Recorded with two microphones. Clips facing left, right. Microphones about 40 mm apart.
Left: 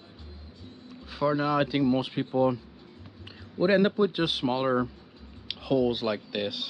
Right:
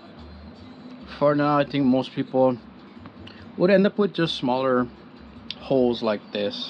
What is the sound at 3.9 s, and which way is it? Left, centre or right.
Speech, centre.